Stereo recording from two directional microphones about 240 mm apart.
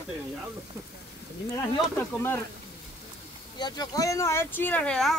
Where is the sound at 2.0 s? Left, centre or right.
Centre.